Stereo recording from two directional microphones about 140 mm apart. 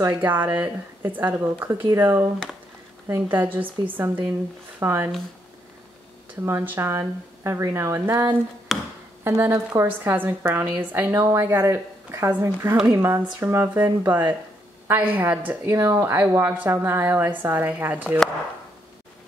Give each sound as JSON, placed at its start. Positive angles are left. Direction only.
{"t": 0.2, "sound": "a woman's voice", "side_deg": -15}
{"t": 6.4, "sound": "speech", "side_deg": -15}
{"t": 8.7, "sound": "music", "side_deg": 0}
{"t": 9.2, "sound": "a woman's voice", "side_deg": -20}